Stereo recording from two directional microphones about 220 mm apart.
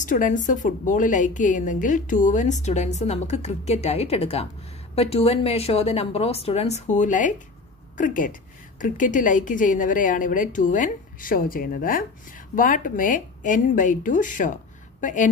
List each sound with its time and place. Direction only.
0.0 s a woman's voice: 35° left (ahead or behind)